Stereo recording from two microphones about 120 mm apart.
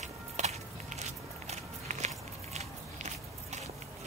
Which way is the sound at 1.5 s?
75° right (ahead or behind).